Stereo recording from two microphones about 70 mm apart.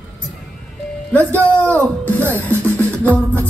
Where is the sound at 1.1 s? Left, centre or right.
Left.